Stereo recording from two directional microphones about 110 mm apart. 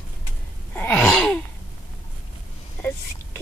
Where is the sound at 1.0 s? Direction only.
5° left (ahead or behind).